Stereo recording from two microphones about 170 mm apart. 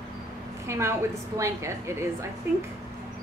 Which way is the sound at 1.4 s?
15° right (ahead or behind).